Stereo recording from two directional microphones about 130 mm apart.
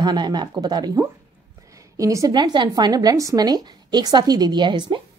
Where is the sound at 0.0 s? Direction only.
35° right (ahead or behind).